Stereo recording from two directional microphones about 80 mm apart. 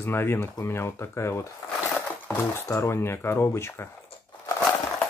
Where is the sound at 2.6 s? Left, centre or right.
Left.